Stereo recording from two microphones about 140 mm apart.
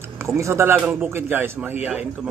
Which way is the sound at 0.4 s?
20° right (ahead or behind).